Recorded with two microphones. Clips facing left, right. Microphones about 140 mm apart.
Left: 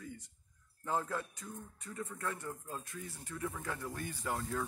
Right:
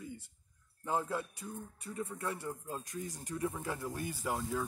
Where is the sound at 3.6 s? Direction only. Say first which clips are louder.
Right 3 dB; 15° right (ahead or behind).